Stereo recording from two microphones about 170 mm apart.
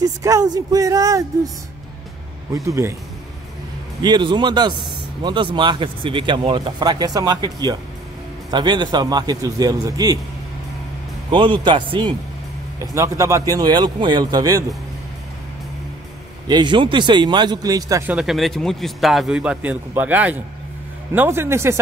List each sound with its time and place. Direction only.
0.0 s speech: 20° right (ahead or behind)
2.5 s a man's voice: 15° right (ahead or behind)
4.0 s speech: 25° right (ahead or behind)
11.2 s speech: 30° right (ahead or behind)
16.4 s speech: 25° right (ahead or behind)
18.1 s a man's voice: centre (ahead or behind)